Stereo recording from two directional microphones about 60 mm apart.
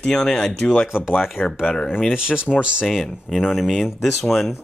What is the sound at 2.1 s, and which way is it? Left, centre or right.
Speech, centre.